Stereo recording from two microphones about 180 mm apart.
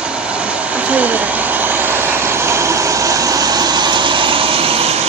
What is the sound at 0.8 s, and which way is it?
Vehicle, 10° right (ahead or behind).